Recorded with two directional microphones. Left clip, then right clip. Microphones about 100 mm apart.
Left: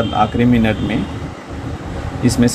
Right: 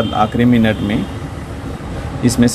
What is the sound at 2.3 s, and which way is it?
Speech, 35° right (ahead or behind).